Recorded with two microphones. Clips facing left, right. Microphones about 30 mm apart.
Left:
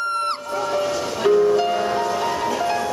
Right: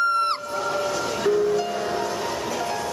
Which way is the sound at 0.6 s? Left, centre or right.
Centre.